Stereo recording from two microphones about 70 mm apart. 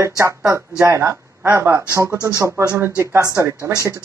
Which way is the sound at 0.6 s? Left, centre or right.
Right.